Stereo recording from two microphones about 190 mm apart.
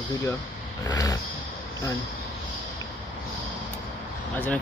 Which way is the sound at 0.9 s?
20° left (ahead or behind).